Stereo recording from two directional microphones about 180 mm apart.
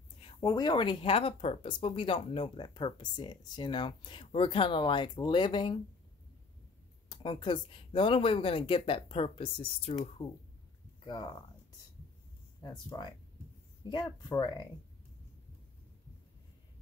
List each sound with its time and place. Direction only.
0.2 s speech: 25° left (ahead or behind)
7.1 s speech: 25° left (ahead or behind)
12.6 s speech: 25° left (ahead or behind)